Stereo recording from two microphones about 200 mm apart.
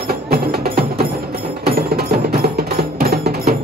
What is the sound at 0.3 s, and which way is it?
Music, 50° right (ahead or behind).